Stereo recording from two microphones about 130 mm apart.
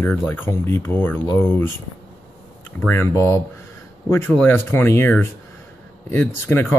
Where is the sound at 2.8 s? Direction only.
15° left (ahead or behind).